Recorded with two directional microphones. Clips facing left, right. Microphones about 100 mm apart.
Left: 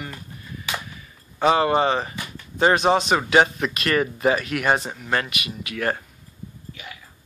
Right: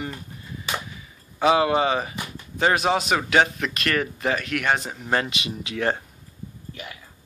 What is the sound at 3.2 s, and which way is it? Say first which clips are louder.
Speech: left 2 dB; 5° left (ahead or behind).